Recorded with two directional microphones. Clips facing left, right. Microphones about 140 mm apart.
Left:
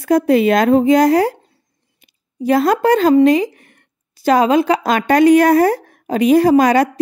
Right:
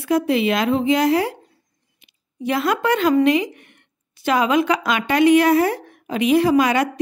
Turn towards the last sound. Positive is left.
turn(degrees=40)  # may be behind; listen again after turning